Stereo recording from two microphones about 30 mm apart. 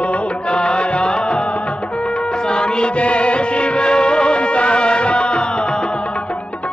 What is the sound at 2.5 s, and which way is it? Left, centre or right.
Music, left.